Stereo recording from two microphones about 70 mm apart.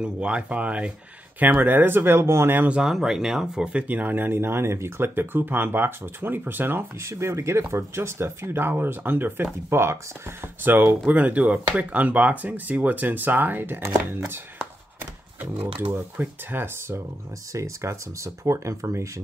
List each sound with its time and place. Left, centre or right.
0.0 s speech: centre; by 2.7 s right
2.7 s speech: centre; by 14.4 s right
15.5 s speech: right
17.5 s speech: right